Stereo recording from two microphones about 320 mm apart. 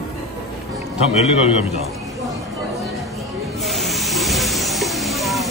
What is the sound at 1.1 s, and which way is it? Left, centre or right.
Speech, centre.